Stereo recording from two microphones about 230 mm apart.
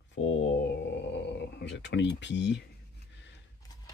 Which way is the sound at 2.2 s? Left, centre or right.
Left.